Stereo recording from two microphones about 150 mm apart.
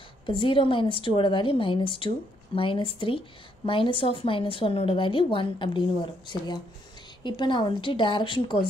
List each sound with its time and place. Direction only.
0.3 s a woman's voice: 35° left (ahead or behind)